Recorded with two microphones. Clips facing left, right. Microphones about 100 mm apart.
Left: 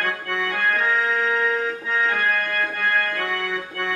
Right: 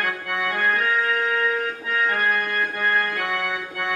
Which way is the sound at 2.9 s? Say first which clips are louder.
Even; 15° right (ahead or behind).